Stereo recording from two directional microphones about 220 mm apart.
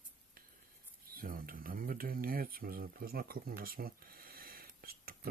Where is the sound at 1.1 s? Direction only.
40° right (ahead or behind).